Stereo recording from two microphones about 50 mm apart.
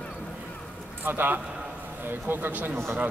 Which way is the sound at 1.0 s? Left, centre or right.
Right.